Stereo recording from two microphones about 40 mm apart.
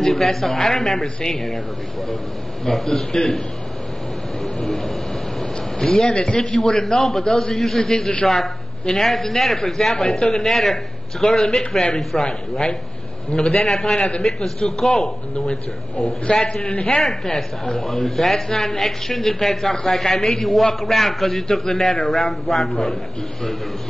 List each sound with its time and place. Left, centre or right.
0.0 s speech: centre
2.6 s speech: centre
4.6 s speech: centre
12.3 s a man's voice: left
13.9 s a man's voice: left
14.8 s speech: centre
16.3 s a man's voice: left
17.0 s speech: centre